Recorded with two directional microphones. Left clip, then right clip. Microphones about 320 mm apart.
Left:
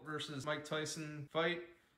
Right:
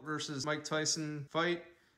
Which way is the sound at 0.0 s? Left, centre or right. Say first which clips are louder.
Right 5 dB; centre.